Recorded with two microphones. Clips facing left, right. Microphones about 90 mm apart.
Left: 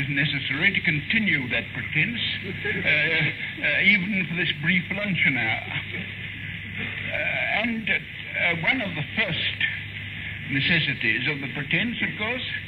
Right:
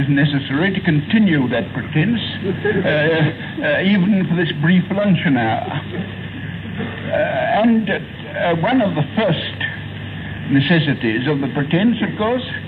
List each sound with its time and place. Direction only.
0.0 s a man's voice: 45° right (ahead or behind)